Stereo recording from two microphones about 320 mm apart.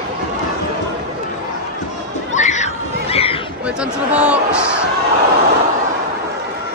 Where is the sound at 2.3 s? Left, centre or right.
Left.